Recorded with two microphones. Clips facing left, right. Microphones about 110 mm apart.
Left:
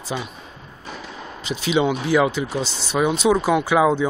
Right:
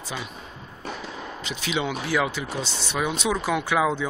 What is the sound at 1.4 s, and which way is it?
Speech, 30° left (ahead or behind).